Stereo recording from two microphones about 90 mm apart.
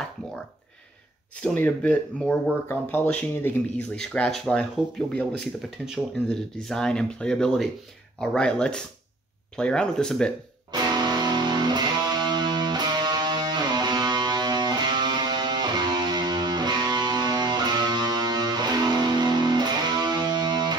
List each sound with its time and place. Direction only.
1.3 s speech: 20° left (ahead or behind)
2.1 s speech: 10° left (ahead or behind)
2.7 s speech: 20° left (ahead or behind)
4.0 s speech: 10° left (ahead or behind)
10.7 s music: 50° right (ahead or behind)